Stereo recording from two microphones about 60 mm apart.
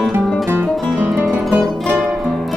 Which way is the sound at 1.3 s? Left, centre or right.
Right.